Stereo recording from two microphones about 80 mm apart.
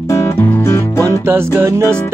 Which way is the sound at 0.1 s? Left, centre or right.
Left.